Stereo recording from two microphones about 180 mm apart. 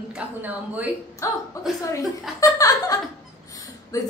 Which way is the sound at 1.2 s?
15° left (ahead or behind).